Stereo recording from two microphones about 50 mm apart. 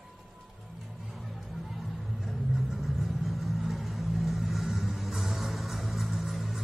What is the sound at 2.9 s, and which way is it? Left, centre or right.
Vehicle, centre.